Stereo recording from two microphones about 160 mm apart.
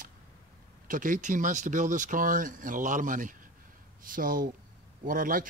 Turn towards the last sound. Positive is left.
turn(degrees=-60)  # may be behind; listen again after turning